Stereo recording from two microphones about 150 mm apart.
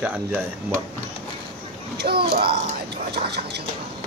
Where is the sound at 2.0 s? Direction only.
90° right.